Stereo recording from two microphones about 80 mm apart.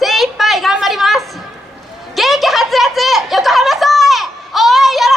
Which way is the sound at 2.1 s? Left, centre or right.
Centre.